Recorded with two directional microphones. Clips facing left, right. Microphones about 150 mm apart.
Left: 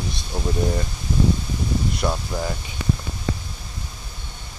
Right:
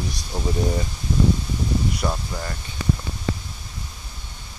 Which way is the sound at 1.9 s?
5° left (ahead or behind).